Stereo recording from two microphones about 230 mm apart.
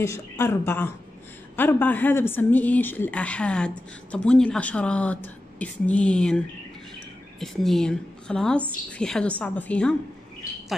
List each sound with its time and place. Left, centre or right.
0.0 s a woman's voice: centre